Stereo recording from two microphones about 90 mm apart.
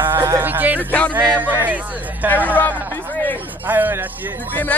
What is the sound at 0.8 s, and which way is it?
Speech, 15° left (ahead or behind).